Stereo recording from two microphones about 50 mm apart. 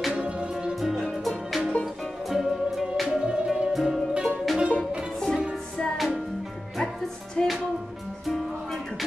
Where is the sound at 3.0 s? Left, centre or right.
Centre.